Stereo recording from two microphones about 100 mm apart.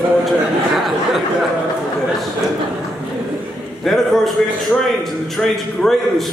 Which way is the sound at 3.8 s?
Centre (ahead or behind).